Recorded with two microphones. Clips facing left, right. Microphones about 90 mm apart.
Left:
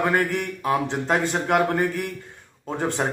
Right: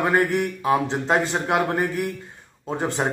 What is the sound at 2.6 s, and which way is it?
Speech, 20° right (ahead or behind).